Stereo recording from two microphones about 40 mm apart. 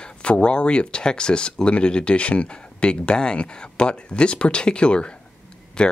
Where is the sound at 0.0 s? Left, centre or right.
Left.